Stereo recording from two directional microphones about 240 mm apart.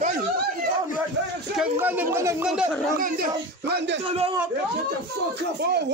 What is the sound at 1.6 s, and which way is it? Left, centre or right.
Speech, centre.